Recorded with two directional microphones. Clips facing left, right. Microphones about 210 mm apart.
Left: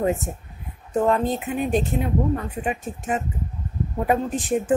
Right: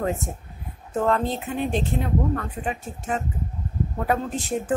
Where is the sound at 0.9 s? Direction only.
15° left (ahead or behind).